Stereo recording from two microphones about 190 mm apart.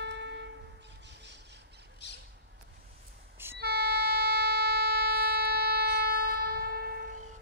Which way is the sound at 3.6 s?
55° right (ahead or behind).